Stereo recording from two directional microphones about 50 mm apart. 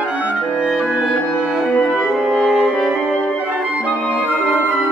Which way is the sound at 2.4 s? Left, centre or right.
Centre.